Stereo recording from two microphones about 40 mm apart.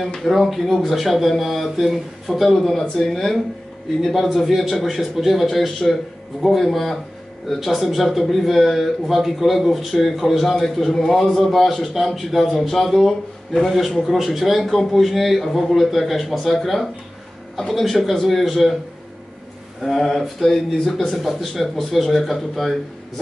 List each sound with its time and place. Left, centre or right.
0.2 s a man's voice: centre
10.4 s a man's voice: centre
19.8 s a man's voice: centre
21.2 s a man's voice: centre